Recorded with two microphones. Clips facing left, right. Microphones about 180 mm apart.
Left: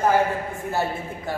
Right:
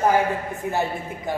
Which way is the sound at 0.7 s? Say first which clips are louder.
Right 1 dB; 15° right (ahead or behind).